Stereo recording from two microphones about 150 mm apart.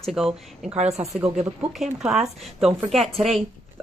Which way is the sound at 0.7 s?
45° right (ahead or behind).